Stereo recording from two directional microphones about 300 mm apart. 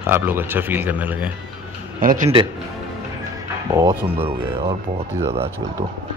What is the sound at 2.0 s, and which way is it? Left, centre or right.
Speech, right.